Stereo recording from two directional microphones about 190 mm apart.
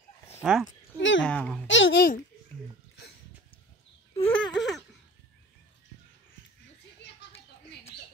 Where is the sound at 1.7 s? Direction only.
75° left (ahead or behind).